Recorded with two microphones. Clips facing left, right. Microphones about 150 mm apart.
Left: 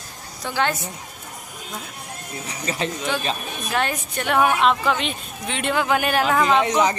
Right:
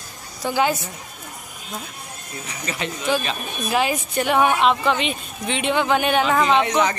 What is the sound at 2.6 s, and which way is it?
Speech, 30° left (ahead or behind).